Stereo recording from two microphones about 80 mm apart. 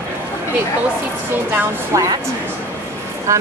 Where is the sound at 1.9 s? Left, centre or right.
Right.